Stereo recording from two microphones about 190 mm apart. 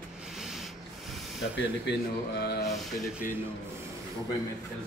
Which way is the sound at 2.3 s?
60° left (ahead or behind).